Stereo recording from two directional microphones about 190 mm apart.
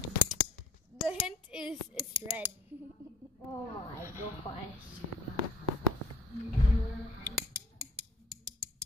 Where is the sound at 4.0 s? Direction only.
15° right (ahead or behind).